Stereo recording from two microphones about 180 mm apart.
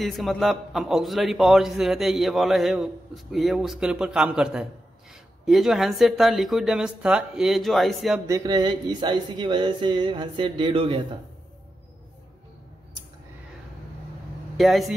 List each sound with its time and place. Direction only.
0.0 s a man's voice: centre (ahead or behind)
8.3 s speech: 20° right (ahead or behind)
14.6 s a man's voice: centre (ahead or behind)